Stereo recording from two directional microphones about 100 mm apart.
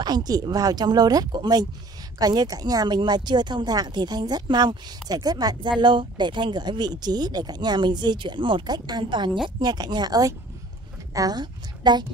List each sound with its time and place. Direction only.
0.0 s a woman's voice: 45° right (ahead or behind)